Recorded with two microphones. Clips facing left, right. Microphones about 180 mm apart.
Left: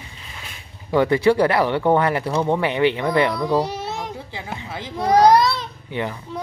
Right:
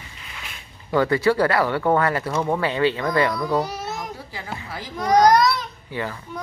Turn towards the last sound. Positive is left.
turn(degrees=20)  # may be behind; listen again after turning